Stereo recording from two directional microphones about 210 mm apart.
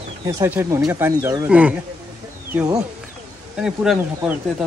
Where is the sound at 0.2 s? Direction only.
15° right (ahead or behind).